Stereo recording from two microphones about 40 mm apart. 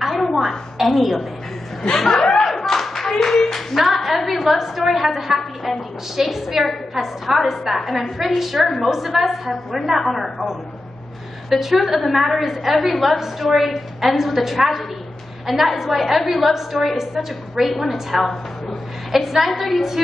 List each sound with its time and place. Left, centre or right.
0.3 s a sound: centre
1.8 s speech: centre
2.1 s chuckle: centre
2.4 s clapping: centre
3.7 s a woman's voice: centre
11.6 s a woman's voice: centre